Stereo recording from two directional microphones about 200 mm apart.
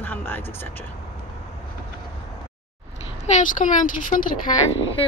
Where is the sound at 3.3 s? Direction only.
40° left (ahead or behind).